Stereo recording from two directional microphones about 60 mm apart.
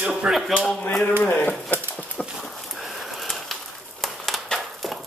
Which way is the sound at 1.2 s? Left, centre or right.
Left.